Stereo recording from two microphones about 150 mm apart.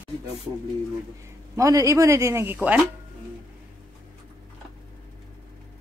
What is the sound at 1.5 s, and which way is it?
Speech, 20° right (ahead or behind).